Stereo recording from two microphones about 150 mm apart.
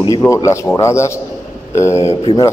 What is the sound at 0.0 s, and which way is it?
A man's voice, 20° left (ahead or behind).